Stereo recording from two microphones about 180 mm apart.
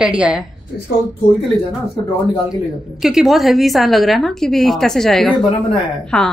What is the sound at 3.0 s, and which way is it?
A woman's voice, 5° right (ahead or behind).